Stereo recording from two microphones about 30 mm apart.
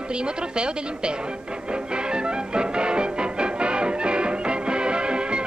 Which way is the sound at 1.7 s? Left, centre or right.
Right.